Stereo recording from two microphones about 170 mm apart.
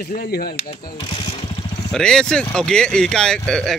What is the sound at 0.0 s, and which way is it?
Speech, 65° left (ahead or behind).